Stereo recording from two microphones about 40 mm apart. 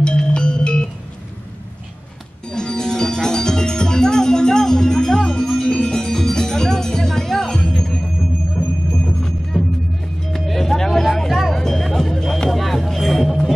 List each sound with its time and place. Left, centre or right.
0.0 s music: left
2.5 s music: centre